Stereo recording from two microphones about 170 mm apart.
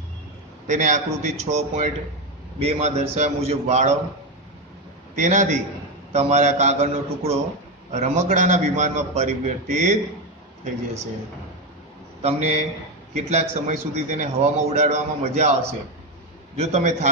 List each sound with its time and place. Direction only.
0.7 s a man's voice: 45° right (ahead or behind)
5.1 s a man's voice: 45° right (ahead or behind)
12.2 s a man's voice: 40° right (ahead or behind)
16.5 s a man's voice: 40° right (ahead or behind)